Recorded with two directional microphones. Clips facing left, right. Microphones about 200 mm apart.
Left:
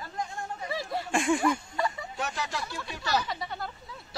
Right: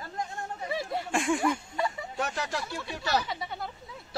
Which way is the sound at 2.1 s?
55° right (ahead or behind).